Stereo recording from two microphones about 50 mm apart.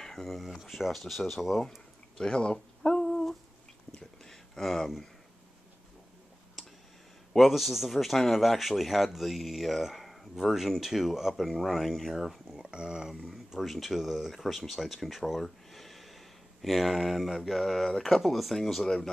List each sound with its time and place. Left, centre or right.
0.0 s speech: centre
2.1 s speech: centre
3.1 s humming: centre
4.2 s a sound: centre
7.3 s speech: centre
12.5 s speech: centre
13.1 s speech: centre